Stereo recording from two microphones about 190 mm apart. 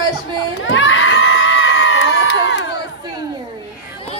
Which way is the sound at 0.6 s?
90° left.